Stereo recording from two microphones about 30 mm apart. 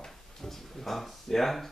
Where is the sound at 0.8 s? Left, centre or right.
Centre.